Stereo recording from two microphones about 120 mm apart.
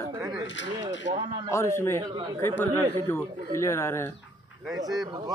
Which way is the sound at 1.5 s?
20° left (ahead or behind).